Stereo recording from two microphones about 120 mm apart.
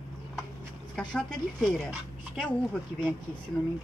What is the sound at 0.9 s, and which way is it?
A man's voice, 5° left (ahead or behind).